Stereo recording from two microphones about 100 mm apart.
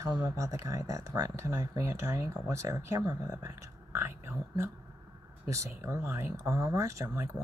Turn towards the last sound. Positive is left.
turn(degrees=-30)  # may be behind; listen again after turning